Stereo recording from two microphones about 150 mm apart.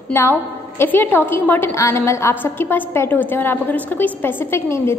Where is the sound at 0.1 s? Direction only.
15° left (ahead or behind).